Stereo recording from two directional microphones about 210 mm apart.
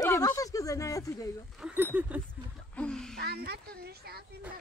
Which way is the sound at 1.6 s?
5° right (ahead or behind).